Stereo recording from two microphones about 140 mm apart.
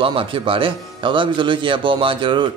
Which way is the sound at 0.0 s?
40° right (ahead or behind).